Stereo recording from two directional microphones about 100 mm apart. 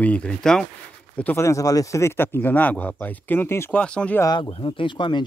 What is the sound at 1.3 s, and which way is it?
Speech, 30° left (ahead or behind).